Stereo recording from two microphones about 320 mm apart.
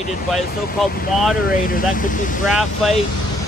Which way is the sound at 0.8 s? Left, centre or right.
Left.